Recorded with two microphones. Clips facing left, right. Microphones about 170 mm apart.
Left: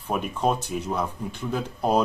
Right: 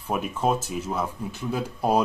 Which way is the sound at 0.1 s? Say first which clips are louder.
Even; 5° right (ahead or behind).